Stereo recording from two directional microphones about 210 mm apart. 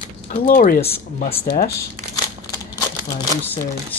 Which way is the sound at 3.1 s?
15° left (ahead or behind).